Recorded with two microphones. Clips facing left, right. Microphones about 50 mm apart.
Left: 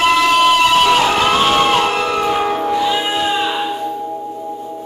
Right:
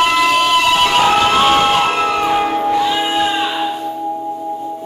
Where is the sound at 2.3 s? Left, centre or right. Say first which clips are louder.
Right 2 dB; centre.